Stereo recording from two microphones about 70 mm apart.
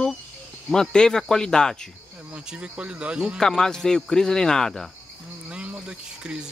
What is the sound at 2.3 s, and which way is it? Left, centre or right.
Speech, centre.